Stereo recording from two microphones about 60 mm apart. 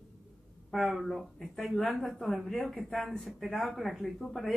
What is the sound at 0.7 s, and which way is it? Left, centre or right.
A woman's voice, centre.